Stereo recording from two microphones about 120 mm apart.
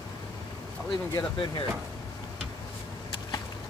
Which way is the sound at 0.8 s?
40° left (ahead or behind).